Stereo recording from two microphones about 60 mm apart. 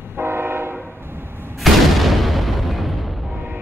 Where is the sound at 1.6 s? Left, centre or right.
Centre.